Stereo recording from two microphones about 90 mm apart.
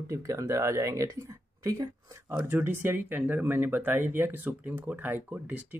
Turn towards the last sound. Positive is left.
turn(degrees=-20)  # may be behind; listen again after turning